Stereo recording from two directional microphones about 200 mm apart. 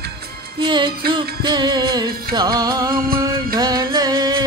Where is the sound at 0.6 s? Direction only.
25° right (ahead or behind).